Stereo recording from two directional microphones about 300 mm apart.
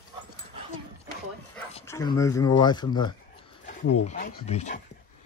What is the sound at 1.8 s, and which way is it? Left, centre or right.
Speech, centre.